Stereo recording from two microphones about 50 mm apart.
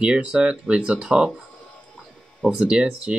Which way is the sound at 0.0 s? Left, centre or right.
Centre.